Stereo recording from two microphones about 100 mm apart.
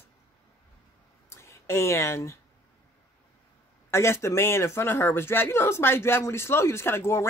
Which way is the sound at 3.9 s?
25° left (ahead or behind).